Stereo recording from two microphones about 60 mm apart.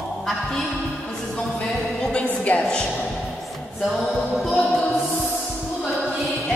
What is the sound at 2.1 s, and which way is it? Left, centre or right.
Music, centre.